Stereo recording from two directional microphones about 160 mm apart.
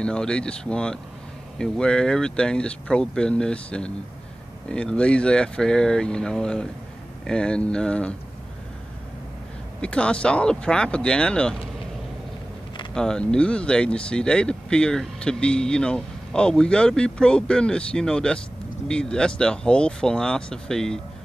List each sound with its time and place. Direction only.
0.0 s speech: 5° left (ahead or behind)
9.8 s speech: 5° left (ahead or behind)
12.9 s speech: 5° left (ahead or behind)